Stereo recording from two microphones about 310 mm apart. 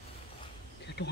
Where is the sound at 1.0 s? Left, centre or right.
Left.